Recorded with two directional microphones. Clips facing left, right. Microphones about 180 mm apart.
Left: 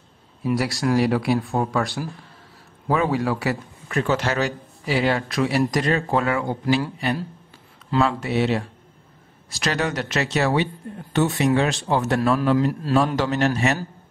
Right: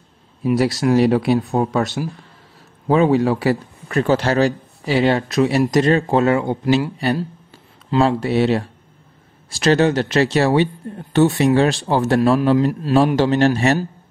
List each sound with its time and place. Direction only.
0.4 s speech: 25° right (ahead or behind)
8.0 s speech: 30° right (ahead or behind)